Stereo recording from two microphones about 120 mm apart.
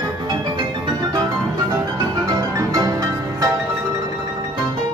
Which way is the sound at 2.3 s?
30° right (ahead or behind).